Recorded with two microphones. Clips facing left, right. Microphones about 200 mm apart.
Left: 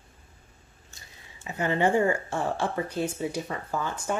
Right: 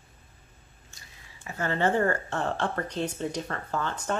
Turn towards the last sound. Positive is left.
turn(degrees=10)  # may be behind; listen again after turning